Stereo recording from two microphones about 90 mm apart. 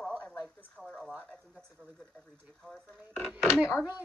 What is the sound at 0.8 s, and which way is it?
Speech, 5° right (ahead or behind).